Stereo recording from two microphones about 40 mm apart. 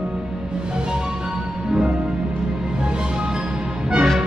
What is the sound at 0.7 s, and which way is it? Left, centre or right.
Music, right.